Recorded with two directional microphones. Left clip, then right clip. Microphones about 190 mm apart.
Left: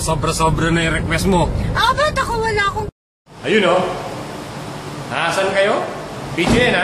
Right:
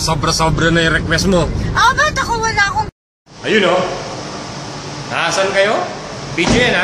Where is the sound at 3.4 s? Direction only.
Centre (ahead or behind).